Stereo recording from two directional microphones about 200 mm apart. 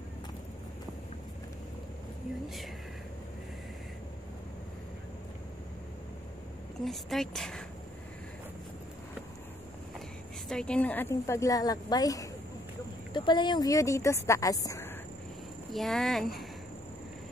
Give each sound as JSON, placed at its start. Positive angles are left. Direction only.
{"t": 6.8, "sound": "a woman's voice", "side_deg": 0}
{"t": 10.5, "sound": "a woman's voice", "side_deg": 5}
{"t": 15.7, "sound": "a woman's voice", "side_deg": 0}